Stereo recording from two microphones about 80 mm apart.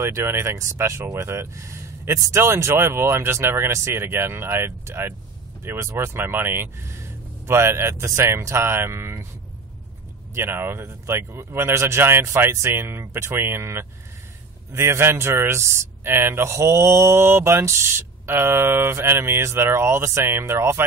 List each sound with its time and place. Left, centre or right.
0.0 s speech: right
10.3 s speech: right